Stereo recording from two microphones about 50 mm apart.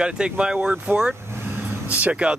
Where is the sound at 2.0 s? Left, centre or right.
Right.